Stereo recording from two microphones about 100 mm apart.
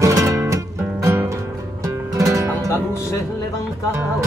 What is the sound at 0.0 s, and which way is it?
Music, 35° right (ahead or behind).